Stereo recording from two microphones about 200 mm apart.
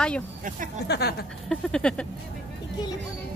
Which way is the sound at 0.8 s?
55° left (ahead or behind).